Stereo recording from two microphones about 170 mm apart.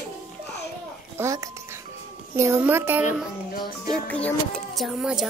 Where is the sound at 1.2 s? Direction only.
20° right (ahead or behind).